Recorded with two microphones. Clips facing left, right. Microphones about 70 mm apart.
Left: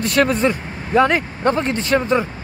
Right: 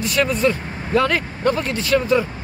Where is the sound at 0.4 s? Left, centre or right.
Left.